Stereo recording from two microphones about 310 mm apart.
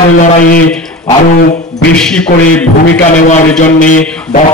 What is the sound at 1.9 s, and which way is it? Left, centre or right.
Speech, centre.